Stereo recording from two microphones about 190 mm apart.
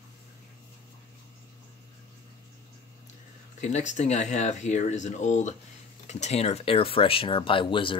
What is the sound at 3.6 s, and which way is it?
Speech, 40° left (ahead or behind).